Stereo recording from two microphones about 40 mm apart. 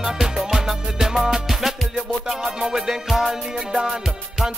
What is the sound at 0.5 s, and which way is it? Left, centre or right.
Music, centre.